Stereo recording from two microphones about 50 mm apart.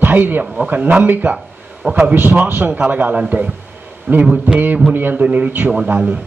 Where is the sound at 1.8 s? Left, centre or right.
Right.